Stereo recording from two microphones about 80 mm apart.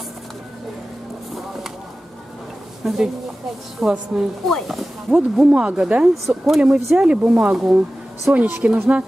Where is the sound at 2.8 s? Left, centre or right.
Centre.